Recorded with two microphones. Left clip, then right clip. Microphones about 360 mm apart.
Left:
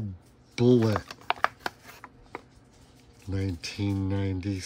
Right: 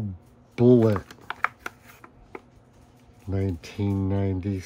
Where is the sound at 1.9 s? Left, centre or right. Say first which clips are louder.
Left 1 dB; centre.